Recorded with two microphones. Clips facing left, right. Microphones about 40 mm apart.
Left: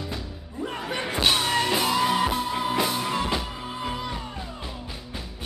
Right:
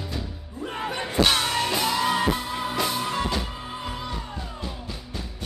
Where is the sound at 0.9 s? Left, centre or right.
Left.